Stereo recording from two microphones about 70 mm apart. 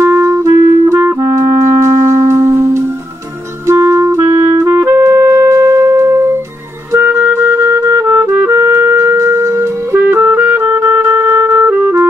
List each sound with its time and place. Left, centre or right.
0.0 s clarinet: right
1.2 s music: right
3.6 s clarinet: right
5.5 s music: right
6.9 s clarinet: right
8.2 s music: right